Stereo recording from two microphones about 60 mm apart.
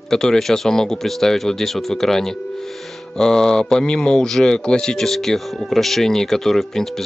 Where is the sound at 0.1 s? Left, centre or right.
Centre.